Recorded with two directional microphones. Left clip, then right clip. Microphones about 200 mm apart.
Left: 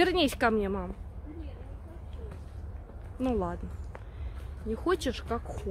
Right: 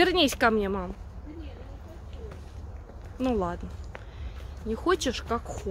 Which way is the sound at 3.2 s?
10° right (ahead or behind).